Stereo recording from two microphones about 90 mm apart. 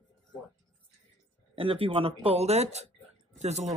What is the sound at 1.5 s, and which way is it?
Speech, 85° right.